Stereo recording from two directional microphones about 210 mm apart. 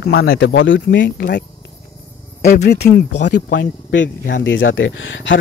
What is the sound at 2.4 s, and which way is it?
Speech, 35° left (ahead or behind).